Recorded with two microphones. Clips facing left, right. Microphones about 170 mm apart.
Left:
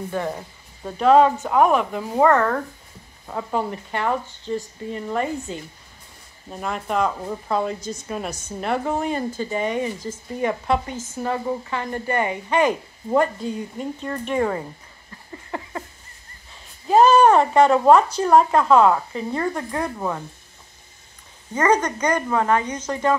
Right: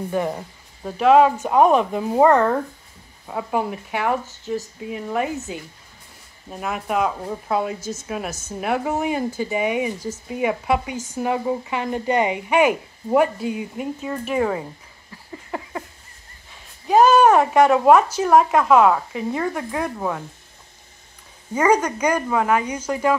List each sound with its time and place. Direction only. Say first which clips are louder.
0.1 s speech: right 4 dB; 15° right (ahead or behind)
1.5 s speech: right 2 dB; 20° right (ahead or behind)
6.5 s speech: right 1 dB; 5° right (ahead or behind)
16.8 s speech: even; centre (ahead or behind)
21.5 s speech: right 1 dB; 10° right (ahead or behind)